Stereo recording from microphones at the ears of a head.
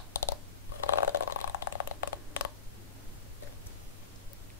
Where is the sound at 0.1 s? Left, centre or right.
Left.